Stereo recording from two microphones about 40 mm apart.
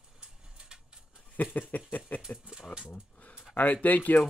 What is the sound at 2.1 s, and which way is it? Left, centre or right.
Speech, left.